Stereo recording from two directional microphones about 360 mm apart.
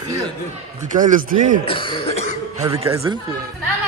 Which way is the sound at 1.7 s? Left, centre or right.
Centre.